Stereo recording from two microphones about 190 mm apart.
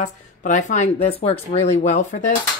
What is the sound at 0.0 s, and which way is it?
A woman's voice, 40° left (ahead or behind).